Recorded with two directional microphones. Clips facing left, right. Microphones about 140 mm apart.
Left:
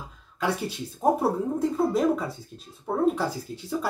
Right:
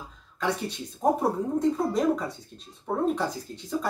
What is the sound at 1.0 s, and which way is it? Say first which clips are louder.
Speech: left 1 dB; 5° left (ahead or behind).